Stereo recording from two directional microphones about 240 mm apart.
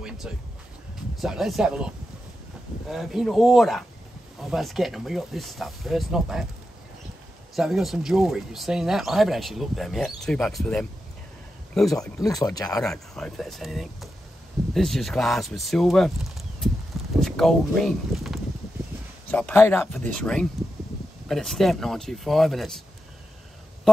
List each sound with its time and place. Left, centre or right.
1.1 s speech: centre
7.5 s speech: centre
12.3 s speech: centre
12.8 s speech: centre
17.2 s speech: centre